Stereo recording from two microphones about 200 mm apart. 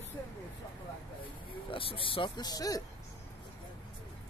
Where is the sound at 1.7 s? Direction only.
25° left (ahead or behind).